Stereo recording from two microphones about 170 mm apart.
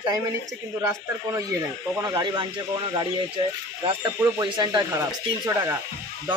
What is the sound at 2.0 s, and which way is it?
Speech, 25° right (ahead or behind).